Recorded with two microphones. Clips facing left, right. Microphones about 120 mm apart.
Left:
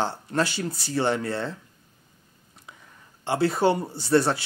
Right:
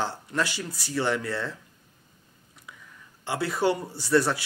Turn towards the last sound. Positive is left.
turn(degrees=30)  # may be behind; listen again after turning